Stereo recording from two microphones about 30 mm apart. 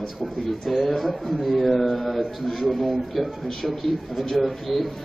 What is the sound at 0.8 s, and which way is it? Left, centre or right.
A man's voice, centre.